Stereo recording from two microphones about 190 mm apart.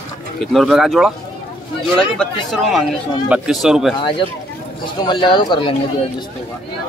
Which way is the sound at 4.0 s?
25° left (ahead or behind).